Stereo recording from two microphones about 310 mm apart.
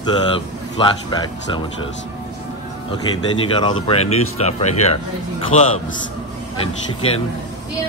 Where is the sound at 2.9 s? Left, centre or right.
Centre.